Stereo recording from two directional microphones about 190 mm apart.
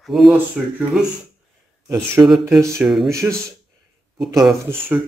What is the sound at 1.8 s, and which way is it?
Speech, 15° right (ahead or behind).